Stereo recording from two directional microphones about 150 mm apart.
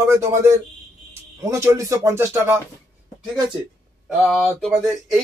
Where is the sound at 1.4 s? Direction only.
20° right (ahead or behind).